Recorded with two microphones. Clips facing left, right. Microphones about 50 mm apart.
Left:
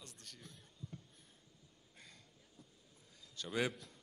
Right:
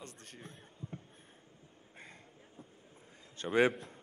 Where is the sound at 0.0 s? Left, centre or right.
Right.